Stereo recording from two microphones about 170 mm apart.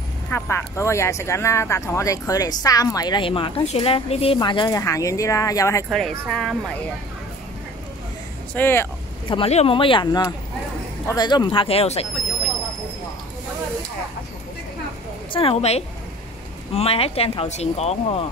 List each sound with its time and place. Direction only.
0.3 s speech: 15° left (ahead or behind)
5.9 s speech: centre (ahead or behind)
8.5 s speech: 10° left (ahead or behind)
9.3 s speech: 35° left (ahead or behind)
15.3 s speech: 35° left (ahead or behind)